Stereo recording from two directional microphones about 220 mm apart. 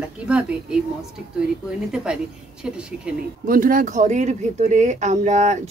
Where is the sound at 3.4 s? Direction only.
40° right (ahead or behind).